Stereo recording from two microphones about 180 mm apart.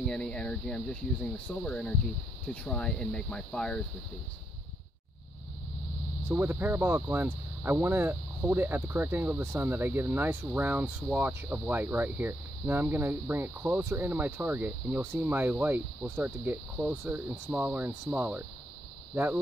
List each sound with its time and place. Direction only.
0.0 s speech: 5° left (ahead or behind)
6.2 s speech: 10° right (ahead or behind)